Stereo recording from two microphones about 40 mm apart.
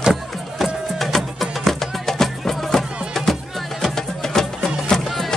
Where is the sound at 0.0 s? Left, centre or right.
Centre.